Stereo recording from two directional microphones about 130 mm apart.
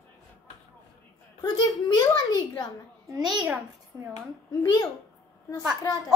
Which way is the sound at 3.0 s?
30° right (ahead or behind).